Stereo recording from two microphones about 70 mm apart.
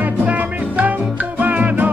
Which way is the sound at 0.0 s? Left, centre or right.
Right.